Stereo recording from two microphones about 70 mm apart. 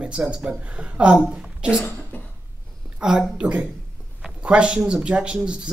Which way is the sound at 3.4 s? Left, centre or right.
Centre.